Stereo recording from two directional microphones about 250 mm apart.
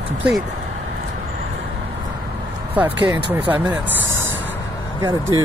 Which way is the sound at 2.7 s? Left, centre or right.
Centre.